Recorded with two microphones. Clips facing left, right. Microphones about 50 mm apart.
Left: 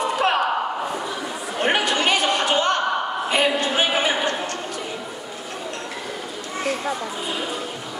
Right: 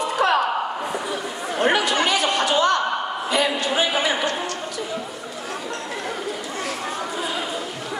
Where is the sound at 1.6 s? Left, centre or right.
Left.